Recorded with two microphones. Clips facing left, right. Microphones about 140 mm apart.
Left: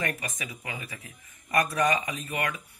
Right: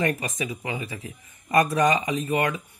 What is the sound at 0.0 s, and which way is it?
Speech, 25° right (ahead or behind).